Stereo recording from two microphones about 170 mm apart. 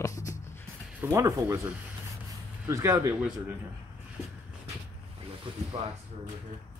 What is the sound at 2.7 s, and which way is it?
Speech, 15° right (ahead or behind).